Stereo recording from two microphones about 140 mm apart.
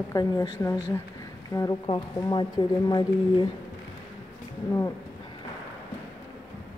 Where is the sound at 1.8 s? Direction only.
35° left (ahead or behind).